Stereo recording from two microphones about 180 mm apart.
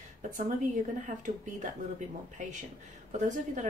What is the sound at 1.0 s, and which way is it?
Speech, 45° right (ahead or behind).